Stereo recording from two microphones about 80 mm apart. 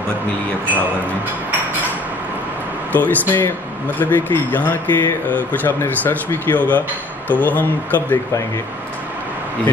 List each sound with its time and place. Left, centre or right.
2.9 s speech: left